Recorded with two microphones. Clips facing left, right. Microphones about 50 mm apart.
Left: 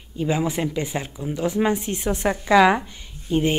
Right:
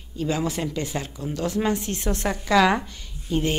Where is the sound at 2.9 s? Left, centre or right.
Centre.